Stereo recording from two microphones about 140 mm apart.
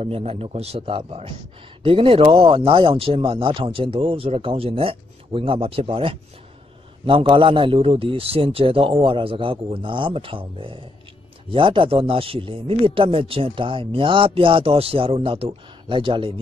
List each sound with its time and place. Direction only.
0.0 s a man's voice: 45° right (ahead or behind)